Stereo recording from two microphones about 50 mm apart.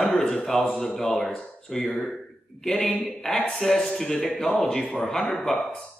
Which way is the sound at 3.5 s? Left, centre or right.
Centre.